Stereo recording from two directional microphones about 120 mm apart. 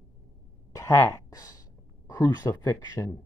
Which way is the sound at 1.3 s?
30° left (ahead or behind).